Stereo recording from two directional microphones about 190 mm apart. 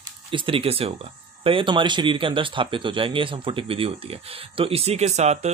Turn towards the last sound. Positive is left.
turn(degrees=-35)  # may be behind; listen again after turning